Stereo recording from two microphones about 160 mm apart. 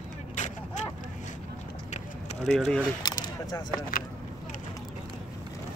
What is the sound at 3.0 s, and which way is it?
Single-lens reflex camera, 25° left (ahead or behind).